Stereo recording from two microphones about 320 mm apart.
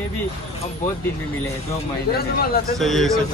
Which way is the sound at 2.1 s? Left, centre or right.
Left.